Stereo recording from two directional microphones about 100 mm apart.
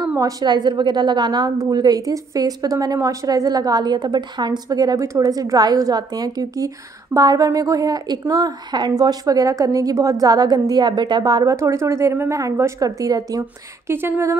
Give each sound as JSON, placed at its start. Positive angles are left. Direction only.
{"t": 0.2, "sound": "a woman's voice", "side_deg": -40}